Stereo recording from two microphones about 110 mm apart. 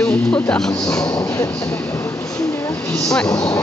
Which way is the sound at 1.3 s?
25° left (ahead or behind).